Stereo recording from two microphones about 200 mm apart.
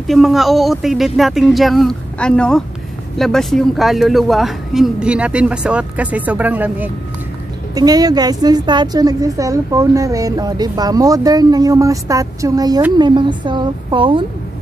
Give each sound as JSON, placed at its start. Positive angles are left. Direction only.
{"t": 0.0, "sound": "speech", "side_deg": 0}
{"t": 7.7, "sound": "a woman's voice", "side_deg": -20}